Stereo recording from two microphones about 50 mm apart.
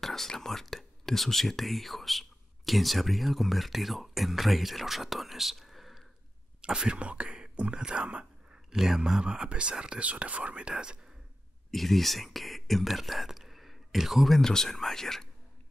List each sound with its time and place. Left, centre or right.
0.0 s whispering: centre
0.3 s speech: centre
6.6 s speech: centre
8.7 s speech: centre
11.7 s speech: centre